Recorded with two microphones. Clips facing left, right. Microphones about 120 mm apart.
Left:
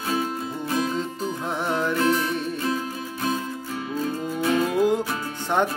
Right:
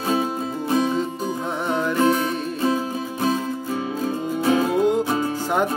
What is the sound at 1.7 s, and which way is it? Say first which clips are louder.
Music: right 3 dB; centre (ahead or behind).